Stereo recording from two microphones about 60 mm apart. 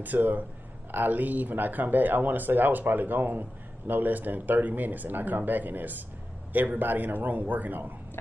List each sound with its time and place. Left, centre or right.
0.0 s a man's voice: right